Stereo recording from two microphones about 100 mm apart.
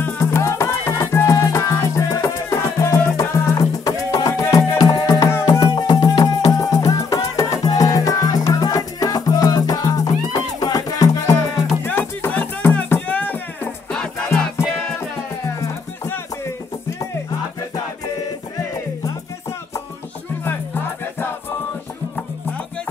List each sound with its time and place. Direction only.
0.0 s music: 25° left (ahead or behind)
11.8 s music: 20° left (ahead or behind)
15.0 s music: 25° left (ahead or behind)